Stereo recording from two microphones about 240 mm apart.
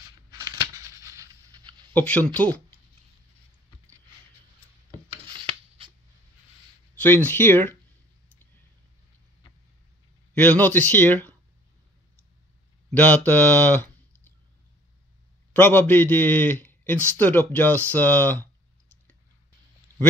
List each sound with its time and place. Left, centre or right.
0.3 s a sound: centre
2.0 s a man's voice: centre
5.2 s a sound: right
7.0 s a man's voice: centre
10.3 s a man's voice: centre
12.9 s a man's voice: centre
15.5 s a man's voice: centre